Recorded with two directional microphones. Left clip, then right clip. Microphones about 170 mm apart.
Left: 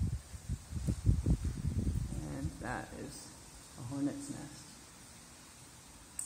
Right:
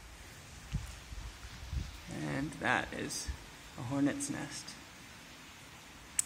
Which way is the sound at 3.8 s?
25° right (ahead or behind).